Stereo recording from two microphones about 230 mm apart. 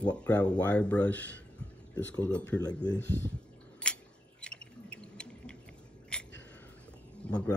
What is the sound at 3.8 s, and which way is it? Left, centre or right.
Scissors, centre.